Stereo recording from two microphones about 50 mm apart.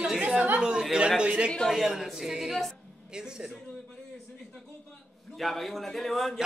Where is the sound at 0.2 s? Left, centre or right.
Right.